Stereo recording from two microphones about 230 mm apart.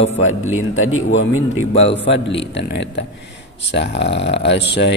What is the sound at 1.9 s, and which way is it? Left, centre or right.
Speech, left.